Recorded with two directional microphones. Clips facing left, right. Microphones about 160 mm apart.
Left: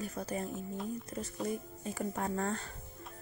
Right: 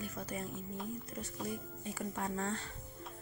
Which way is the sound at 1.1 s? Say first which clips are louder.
Left 6 dB; 40° left (ahead or behind).